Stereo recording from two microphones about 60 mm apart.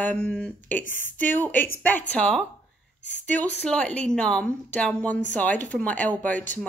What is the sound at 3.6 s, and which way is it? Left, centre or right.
Speech, centre.